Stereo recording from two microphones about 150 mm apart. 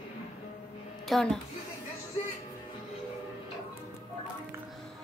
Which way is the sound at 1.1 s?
Centre (ahead or behind).